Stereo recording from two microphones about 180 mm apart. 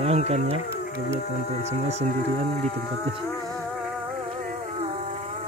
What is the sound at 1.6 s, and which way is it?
Speech, 40° right (ahead or behind).